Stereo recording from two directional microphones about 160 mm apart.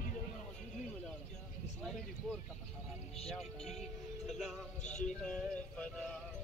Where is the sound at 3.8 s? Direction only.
Centre (ahead or behind).